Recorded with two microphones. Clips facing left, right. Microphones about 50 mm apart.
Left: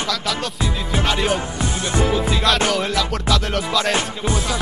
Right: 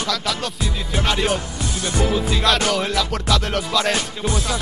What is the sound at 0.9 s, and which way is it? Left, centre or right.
Music, centre.